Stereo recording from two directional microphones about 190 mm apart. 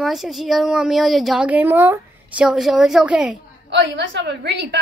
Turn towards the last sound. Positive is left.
turn(degrees=-70)  # may be behind; listen again after turning